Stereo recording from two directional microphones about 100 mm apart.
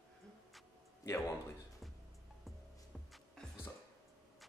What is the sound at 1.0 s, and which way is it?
Speech, 30° left (ahead or behind).